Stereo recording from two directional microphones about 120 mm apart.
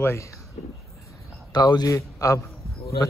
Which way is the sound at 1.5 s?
35° left (ahead or behind).